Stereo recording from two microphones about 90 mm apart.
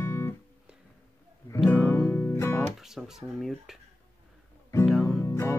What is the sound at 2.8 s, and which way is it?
Speech, 5° right (ahead or behind).